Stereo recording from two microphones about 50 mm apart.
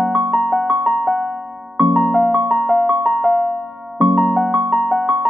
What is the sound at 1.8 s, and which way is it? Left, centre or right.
Music, centre.